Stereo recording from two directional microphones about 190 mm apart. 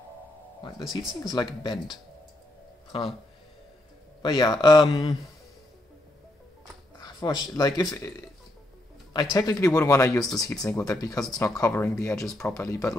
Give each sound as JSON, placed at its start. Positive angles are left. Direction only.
{"t": 1.2, "sound": "a man's voice", "side_deg": 20}
{"t": 2.9, "sound": "a man's voice", "side_deg": 25}
{"t": 4.2, "sound": "a man's voice", "side_deg": 20}
{"t": 7.0, "sound": "speech", "side_deg": 20}
{"t": 9.1, "sound": "a man's voice", "side_deg": 20}
{"t": 12.3, "sound": "speech", "side_deg": 5}
{"t": 12.5, "sound": "a man's voice", "side_deg": 20}